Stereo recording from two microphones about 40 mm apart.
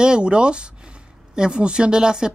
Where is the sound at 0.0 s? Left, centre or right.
Right.